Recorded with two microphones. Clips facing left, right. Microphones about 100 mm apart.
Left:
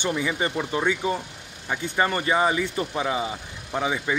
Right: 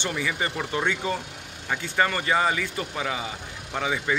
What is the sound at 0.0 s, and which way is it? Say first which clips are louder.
Speech: left 3 dB; 20° left (ahead or behind).